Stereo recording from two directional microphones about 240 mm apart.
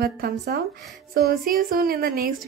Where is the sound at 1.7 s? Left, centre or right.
Right.